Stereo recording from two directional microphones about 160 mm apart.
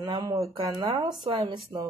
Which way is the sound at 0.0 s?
25° right (ahead or behind).